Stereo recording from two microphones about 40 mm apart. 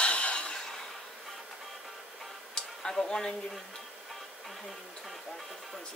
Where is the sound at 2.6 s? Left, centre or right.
Centre.